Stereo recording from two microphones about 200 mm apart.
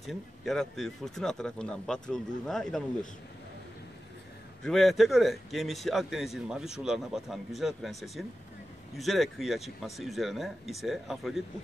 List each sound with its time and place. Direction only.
0.0 s a man's voice: centre (ahead or behind)
4.6 s a man's voice: centre (ahead or behind)